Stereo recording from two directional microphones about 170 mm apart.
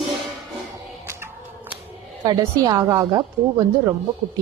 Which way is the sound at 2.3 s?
25° right (ahead or behind).